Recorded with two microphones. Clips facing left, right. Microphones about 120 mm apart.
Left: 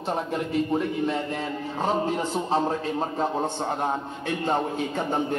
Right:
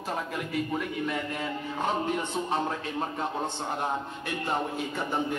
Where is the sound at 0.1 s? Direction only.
30° left (ahead or behind).